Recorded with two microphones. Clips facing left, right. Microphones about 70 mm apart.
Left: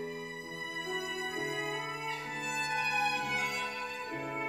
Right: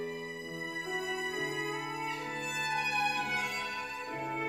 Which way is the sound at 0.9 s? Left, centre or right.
Centre.